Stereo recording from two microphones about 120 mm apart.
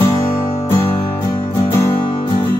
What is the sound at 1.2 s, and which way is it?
Music, 30° left (ahead or behind).